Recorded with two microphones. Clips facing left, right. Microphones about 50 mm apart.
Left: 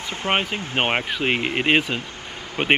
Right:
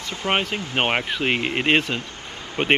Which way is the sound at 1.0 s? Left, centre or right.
Centre.